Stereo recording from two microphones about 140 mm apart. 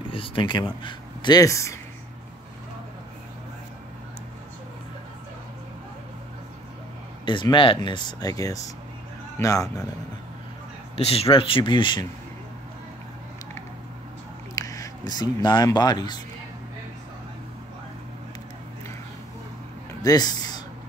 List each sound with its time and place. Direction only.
0.1 s speech: 40° left (ahead or behind); by 1.8 s 20° left (ahead or behind)
7.2 s speech: 35° left (ahead or behind)
11.0 s speech: 45° left (ahead or behind)
14.5 s speech: 25° left (ahead or behind)
20.0 s speech: 25° left (ahead or behind)